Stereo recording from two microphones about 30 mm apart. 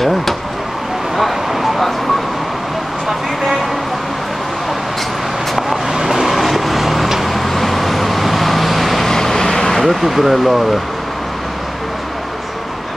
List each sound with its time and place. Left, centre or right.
0.0 s vehicle: centre
1.1 s a sound: centre
5.9 s vehicle: centre
6.2 s vehicle: centre
9.0 s vehicle: centre
9.8 s speech: centre